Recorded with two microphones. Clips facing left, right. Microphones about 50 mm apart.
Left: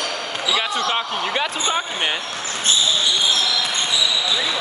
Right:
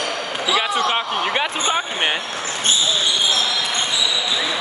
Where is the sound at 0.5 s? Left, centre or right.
Right.